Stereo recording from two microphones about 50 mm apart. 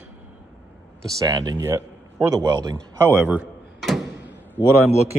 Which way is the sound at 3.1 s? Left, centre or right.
Right.